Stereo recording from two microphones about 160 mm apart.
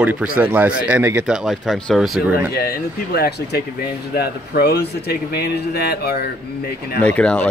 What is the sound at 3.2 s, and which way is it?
Speech, 85° left.